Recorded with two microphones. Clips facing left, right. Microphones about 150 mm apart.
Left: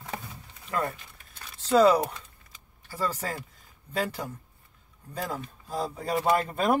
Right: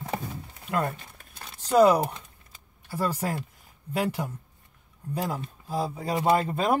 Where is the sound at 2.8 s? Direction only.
15° right (ahead or behind).